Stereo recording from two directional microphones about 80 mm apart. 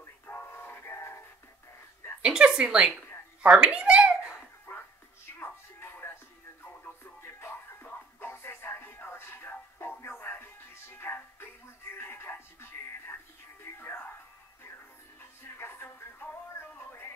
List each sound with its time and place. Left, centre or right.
0.0 s music: left
2.2 s a woman's voice: centre
4.7 s dog: left
5.4 s music: left
7.2 s music: left
15.4 s music: left